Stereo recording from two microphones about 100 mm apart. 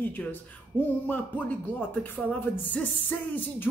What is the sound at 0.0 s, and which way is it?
Speech, 20° left (ahead or behind).